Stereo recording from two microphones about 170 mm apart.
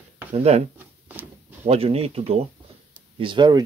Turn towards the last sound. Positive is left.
turn(degrees=-25)  # may be behind; listen again after turning